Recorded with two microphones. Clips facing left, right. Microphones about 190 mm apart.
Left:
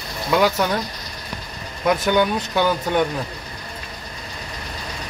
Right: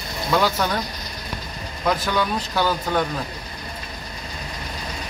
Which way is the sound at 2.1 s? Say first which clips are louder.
Left 5 dB; 20° left (ahead or behind).